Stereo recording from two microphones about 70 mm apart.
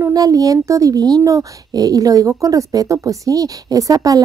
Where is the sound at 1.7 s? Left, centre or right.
Right.